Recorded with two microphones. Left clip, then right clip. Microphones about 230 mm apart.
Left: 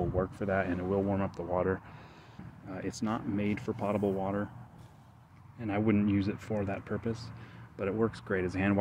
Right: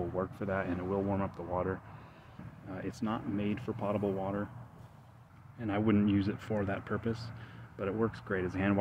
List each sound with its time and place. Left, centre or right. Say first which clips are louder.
0.1 s speech: left 3 dB; centre
5.6 s speech: left 1 dB; centre